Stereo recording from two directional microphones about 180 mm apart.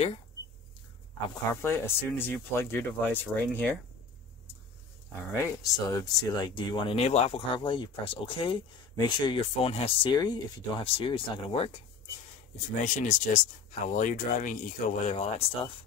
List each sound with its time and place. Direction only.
1.5 s speech: 15° left (ahead or behind)
5.3 s speech: 15° left (ahead or behind); by 11.7 s 30° left (ahead or behind)
12.8 s speech: 45° left (ahead or behind)